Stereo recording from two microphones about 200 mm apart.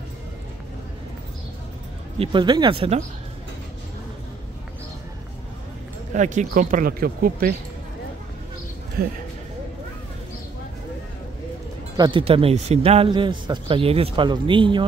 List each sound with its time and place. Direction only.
2.1 s speech: 25° right (ahead or behind)
6.1 s speech: 40° right (ahead or behind)
9.0 s speech: 50° right (ahead or behind)
12.0 s speech: 25° right (ahead or behind)